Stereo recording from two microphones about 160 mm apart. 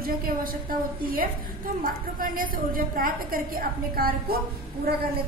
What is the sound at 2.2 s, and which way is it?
A woman's voice, 60° right (ahead or behind).